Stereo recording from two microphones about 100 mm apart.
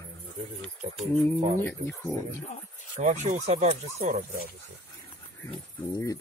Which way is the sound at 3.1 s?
90° right.